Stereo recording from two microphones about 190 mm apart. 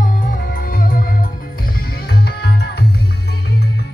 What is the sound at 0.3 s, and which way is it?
Music, 45° left (ahead or behind).